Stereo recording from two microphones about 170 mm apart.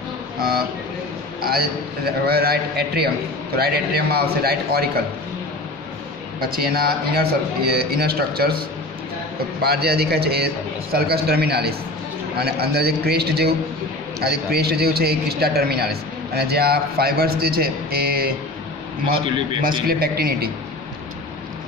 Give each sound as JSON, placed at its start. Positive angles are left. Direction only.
{"t": 1.4, "sound": "a man's voice", "side_deg": -65}
{"t": 6.4, "sound": "a man's voice", "side_deg": -60}
{"t": 19.9, "sound": "a man's voice", "side_deg": -65}